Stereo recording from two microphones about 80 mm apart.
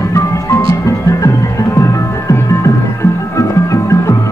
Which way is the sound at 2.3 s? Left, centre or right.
Left.